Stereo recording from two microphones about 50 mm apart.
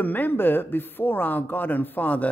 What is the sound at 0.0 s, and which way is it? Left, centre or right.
A man's voice, left.